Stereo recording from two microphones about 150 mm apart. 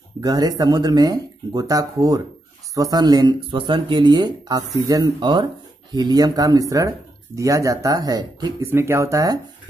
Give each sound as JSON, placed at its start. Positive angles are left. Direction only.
{"t": 0.2, "sound": "speech", "side_deg": -25}
{"t": 8.7, "sound": "speech", "side_deg": -15}